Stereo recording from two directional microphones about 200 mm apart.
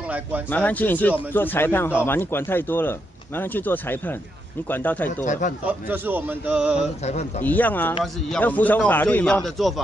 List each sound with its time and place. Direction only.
0.5 s speech: 10° left (ahead or behind)
5.2 s a man's voice: 40° left (ahead or behind)
5.7 s a man's voice: 10° right (ahead or behind)
7.1 s a man's voice: 35° left (ahead or behind)
7.4 s speech: 10° left (ahead or behind)